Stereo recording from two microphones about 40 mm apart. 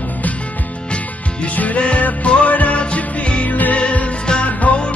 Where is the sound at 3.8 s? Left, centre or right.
Left.